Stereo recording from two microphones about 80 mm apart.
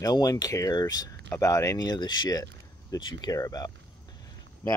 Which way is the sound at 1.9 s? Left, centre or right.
Left.